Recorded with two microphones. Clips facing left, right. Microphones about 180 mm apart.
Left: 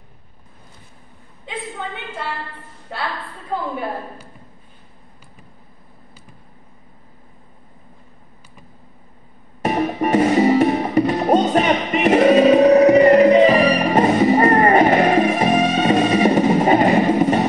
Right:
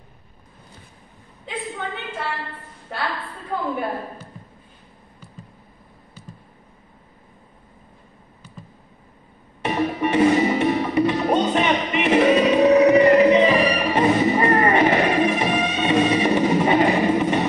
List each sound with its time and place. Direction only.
9.6 s music: 40° left (ahead or behind)